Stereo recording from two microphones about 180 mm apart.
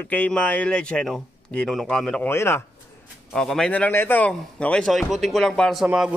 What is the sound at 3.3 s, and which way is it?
A man's voice, 5° left (ahead or behind).